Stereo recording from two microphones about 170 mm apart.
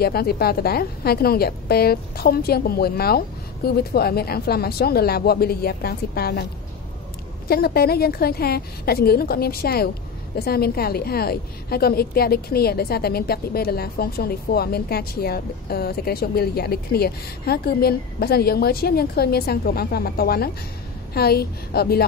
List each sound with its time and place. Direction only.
0.0 s a woman's voice: 65° left (ahead or behind)
7.4 s a woman's voice: 65° left (ahead or behind)